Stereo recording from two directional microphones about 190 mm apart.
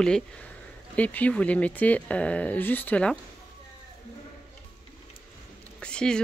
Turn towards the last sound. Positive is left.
turn(degrees=5)  # may be behind; listen again after turning